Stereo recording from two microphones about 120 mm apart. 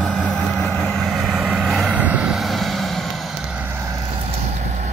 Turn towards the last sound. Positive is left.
turn(degrees=0)  # may be behind; listen again after turning